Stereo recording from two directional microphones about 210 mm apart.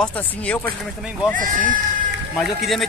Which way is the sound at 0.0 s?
5° left (ahead or behind).